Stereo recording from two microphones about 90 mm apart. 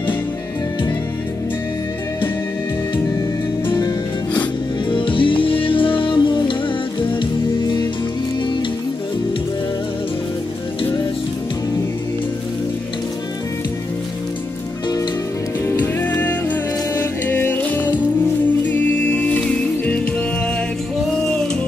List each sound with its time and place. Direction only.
3.6 s music: 55° left (ahead or behind)
4.8 s music: 70° left (ahead or behind)
15.8 s music: 20° left (ahead or behind)